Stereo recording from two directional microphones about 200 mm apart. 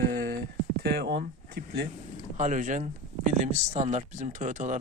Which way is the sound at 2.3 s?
40° right (ahead or behind).